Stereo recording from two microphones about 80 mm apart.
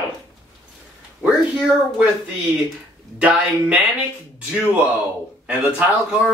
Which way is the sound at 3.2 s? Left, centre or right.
Centre.